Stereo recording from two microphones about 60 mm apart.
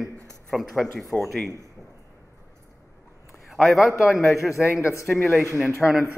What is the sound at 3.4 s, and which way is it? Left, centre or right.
Speech, centre.